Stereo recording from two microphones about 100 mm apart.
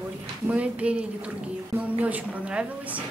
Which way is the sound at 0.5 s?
15° right (ahead or behind).